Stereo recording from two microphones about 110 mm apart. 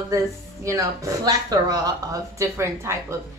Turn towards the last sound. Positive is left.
turn(degrees=-25)  # may be behind; listen again after turning